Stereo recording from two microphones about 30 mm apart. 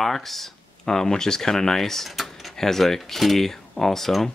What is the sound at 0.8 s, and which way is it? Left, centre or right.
Speech, centre.